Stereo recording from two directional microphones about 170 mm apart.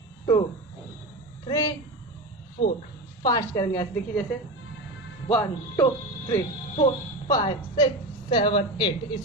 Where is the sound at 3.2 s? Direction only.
20° left (ahead or behind).